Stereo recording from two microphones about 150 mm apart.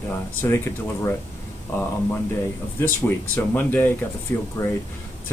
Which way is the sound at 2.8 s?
15° left (ahead or behind).